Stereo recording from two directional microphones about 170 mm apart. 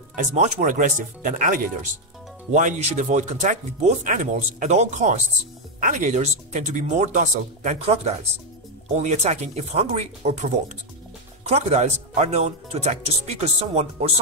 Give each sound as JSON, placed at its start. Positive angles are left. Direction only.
{"t": 0.2, "sound": "speech", "side_deg": -45}